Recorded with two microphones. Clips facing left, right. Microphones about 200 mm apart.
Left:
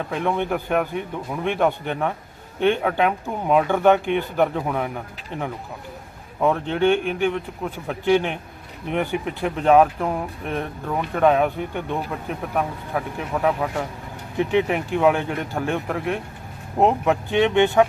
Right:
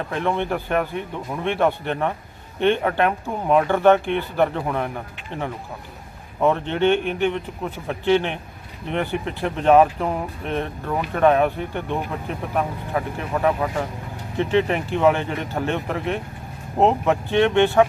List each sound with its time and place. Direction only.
0.1 s speech: 5° left (ahead or behind)
4.0 s speech: 15° left (ahead or behind)
4.4 s speech: 5° left (ahead or behind)